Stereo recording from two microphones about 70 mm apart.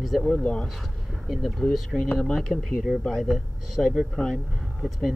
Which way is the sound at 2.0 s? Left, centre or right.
Centre.